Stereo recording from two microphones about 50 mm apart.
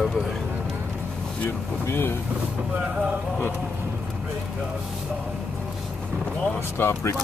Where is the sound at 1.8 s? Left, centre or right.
Left.